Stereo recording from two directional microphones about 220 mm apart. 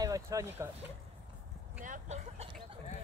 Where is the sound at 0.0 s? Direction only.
15° right (ahead or behind).